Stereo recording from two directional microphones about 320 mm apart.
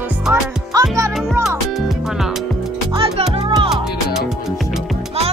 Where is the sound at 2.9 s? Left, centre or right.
Centre.